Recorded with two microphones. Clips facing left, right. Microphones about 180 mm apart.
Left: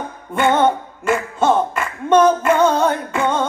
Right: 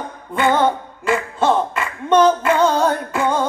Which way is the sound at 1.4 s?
Centre (ahead or behind).